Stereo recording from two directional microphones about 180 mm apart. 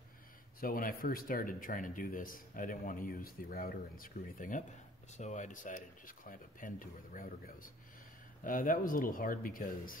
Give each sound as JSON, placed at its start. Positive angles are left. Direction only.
{"t": 0.6, "sound": "speech", "side_deg": 50}